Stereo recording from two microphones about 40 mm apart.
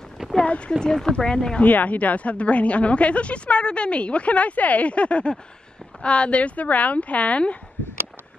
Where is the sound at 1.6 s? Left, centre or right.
Left.